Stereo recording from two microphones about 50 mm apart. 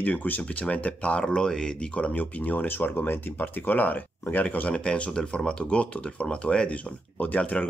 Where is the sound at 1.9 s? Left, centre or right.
Left.